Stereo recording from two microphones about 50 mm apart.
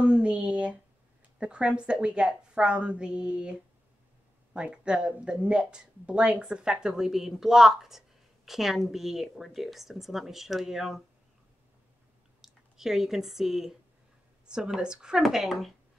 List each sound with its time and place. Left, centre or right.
0.0 s a sound: right
1.4 s a woman's voice: centre
4.6 s a woman's voice: centre
12.4 s speech: centre
15.2 s a woman's voice: centre